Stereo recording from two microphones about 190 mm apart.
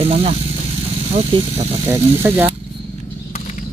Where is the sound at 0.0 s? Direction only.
30° right (ahead or behind).